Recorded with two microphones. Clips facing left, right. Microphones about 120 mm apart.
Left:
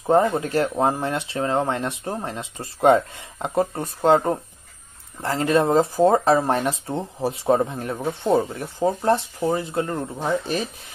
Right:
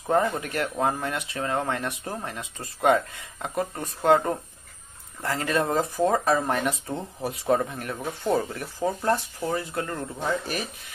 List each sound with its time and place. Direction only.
0.0 s speech: 25° left (ahead or behind)